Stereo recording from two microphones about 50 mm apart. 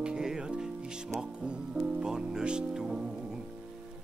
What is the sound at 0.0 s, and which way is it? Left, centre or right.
Music, centre.